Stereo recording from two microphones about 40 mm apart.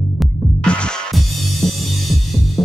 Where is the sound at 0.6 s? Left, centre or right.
Left.